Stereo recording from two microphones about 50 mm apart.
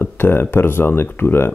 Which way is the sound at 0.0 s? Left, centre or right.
Left.